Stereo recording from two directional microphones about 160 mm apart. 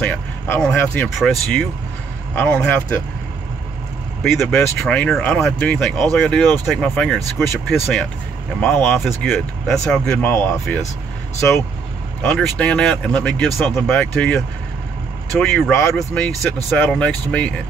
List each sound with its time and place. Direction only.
0.0 s speech: 5° left (ahead or behind)
4.2 s speech: centre (ahead or behind)